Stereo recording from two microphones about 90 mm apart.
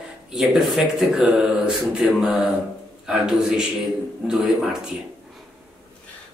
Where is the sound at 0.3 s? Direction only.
5° right (ahead or behind).